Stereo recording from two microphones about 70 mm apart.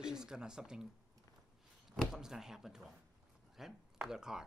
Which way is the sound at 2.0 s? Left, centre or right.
Centre.